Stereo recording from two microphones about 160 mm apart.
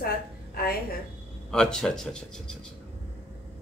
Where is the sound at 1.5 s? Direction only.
5° left (ahead or behind).